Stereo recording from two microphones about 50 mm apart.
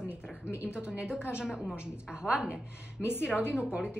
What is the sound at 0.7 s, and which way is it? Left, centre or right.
A woman's voice, centre.